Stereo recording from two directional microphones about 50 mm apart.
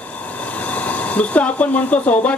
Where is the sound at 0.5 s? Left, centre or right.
Left.